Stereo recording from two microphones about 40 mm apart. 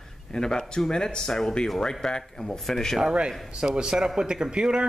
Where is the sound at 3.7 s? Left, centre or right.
Centre.